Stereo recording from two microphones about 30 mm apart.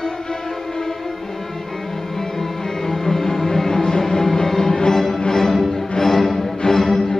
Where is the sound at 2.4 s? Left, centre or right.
Centre.